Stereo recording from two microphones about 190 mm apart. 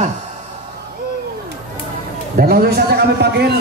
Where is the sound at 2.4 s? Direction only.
55° right (ahead or behind).